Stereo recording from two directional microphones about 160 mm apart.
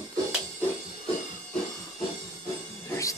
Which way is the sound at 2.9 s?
20° left (ahead or behind).